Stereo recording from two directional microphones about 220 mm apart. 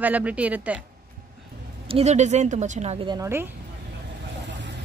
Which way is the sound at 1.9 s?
30° right (ahead or behind).